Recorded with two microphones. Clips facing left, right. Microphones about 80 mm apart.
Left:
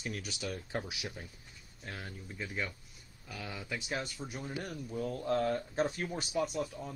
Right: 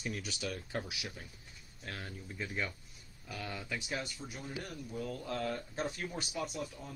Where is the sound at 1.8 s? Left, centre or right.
Centre.